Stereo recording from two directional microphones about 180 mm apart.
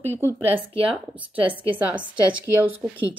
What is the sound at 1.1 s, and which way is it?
Speech, 10° right (ahead or behind).